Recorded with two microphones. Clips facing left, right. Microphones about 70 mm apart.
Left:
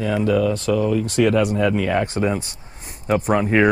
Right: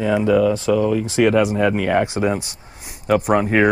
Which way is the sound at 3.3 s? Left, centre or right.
Centre.